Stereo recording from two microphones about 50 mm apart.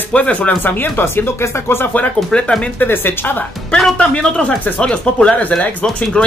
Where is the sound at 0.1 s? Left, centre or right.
Left.